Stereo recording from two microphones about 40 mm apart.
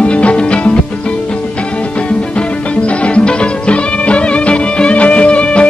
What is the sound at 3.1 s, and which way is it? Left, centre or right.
Music, left.